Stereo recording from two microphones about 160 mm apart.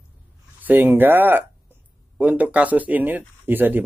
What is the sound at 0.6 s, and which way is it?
Speech, 10° right (ahead or behind).